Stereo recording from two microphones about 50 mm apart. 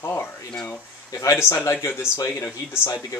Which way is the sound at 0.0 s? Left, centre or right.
Left.